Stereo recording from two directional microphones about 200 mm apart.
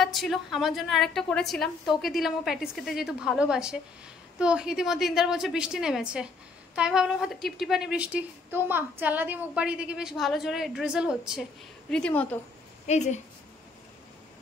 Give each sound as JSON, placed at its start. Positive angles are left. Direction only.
{"t": 0.0, "sound": "a woman's voice", "side_deg": 0}
{"t": 12.8, "sound": "a woman's voice", "side_deg": 35}